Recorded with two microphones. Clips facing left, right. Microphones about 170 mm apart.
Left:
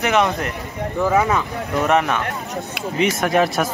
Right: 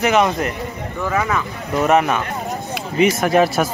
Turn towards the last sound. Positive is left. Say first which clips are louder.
# right 2 dB
turn(degrees=0)  # may be behind; listen again after turning